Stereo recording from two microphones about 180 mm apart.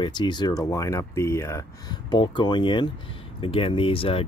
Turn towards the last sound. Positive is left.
turn(degrees=30)  # may be behind; listen again after turning